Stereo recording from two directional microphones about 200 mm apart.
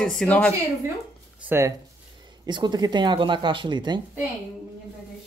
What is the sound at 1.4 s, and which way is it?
Speech, 10° right (ahead or behind).